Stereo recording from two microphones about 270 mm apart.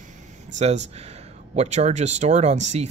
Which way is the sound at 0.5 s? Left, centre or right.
Right.